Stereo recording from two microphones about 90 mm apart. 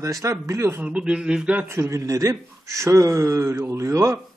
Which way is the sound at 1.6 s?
30° right (ahead or behind).